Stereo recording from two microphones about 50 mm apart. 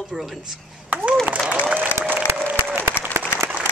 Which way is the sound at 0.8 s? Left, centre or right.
Right.